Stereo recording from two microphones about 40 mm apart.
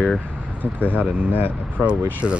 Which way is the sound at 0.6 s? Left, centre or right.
Left.